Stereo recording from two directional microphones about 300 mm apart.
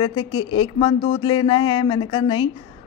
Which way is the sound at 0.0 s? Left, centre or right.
Centre.